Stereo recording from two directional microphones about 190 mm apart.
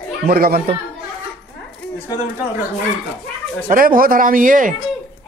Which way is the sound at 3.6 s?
45° right (ahead or behind).